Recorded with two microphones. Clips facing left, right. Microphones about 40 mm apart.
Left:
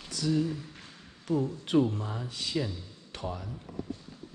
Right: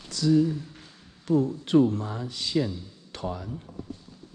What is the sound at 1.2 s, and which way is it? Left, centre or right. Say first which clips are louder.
Speech: right 6 dB; right.